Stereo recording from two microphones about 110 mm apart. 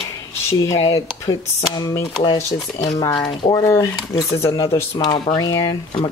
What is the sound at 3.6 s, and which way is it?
Speech, 25° left (ahead or behind).